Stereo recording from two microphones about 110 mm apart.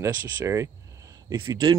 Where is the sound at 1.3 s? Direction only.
40° right (ahead or behind).